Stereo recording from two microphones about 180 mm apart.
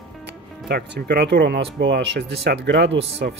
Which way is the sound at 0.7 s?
60° right (ahead or behind).